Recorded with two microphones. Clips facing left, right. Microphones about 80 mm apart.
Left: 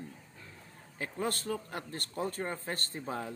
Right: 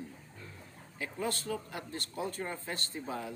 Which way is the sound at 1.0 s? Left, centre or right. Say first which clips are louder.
Left 1 dB; left.